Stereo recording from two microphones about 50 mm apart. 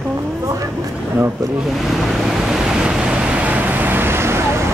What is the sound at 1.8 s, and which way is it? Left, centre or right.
Waves, centre.